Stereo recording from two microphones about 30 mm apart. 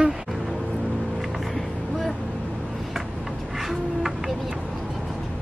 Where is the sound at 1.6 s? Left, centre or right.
Centre.